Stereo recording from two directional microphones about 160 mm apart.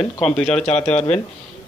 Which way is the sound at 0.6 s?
45° left (ahead or behind).